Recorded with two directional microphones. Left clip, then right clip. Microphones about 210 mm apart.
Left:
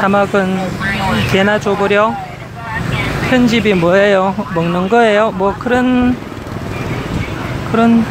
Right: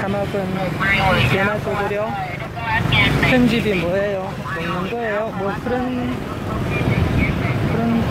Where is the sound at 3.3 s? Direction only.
20° left (ahead or behind).